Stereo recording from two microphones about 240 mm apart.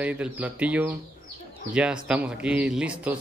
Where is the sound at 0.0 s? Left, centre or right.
Centre.